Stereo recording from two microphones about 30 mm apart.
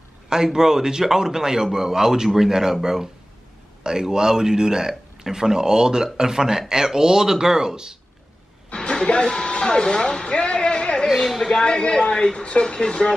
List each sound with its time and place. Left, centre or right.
0.3 s a man's voice: centre
8.7 s a sound: left
11.4 s speech: left
11.8 s speech: left